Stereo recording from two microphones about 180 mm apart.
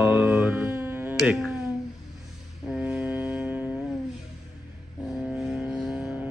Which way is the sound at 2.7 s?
5° right (ahead or behind).